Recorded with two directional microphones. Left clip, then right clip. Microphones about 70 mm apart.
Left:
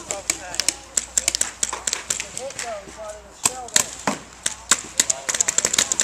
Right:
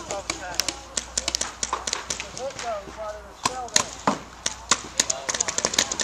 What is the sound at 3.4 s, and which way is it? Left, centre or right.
Chop, left.